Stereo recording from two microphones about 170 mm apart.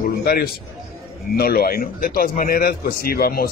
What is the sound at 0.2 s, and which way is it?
A man's voice, 65° left (ahead or behind).